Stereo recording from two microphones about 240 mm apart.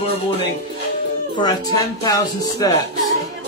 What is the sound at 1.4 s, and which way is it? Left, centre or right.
Speech, centre.